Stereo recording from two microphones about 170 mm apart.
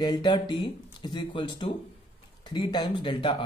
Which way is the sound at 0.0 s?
25° left (ahead or behind).